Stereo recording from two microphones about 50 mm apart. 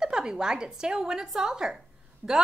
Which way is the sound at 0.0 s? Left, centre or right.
Centre.